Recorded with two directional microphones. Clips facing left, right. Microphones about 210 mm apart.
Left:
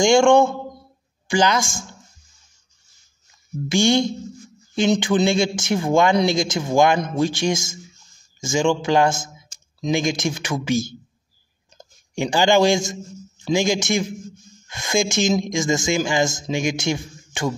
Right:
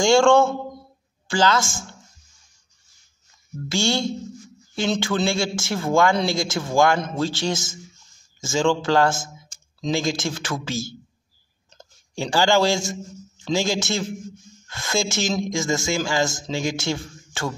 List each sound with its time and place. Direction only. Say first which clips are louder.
0.0 s speech: left 2 dB; 15° left (ahead or behind)
3.6 s speech: left 5 dB; 15° left (ahead or behind)